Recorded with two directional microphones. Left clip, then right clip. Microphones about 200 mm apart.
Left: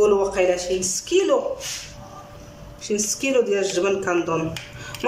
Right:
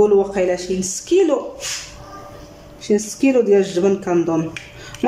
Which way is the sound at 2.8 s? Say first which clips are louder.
Right 6 dB; 25° right (ahead or behind).